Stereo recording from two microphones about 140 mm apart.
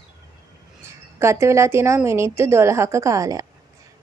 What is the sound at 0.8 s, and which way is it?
A woman's voice, 20° right (ahead or behind).